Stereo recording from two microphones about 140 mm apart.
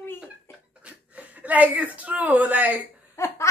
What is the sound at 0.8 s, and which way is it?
A woman's voice, 10° right (ahead or behind).